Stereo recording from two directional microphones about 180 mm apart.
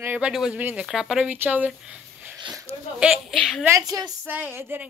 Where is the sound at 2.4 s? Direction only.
20° right (ahead or behind).